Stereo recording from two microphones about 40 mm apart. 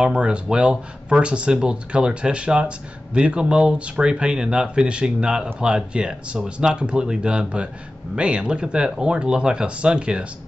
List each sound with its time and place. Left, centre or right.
0.0 s speech: right